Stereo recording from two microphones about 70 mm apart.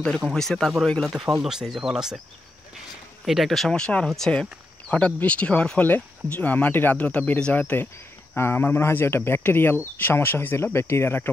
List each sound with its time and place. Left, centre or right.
0.3 s speech: centre
1.4 s speech: centre
3.3 s speech: centre; by 11.2 s left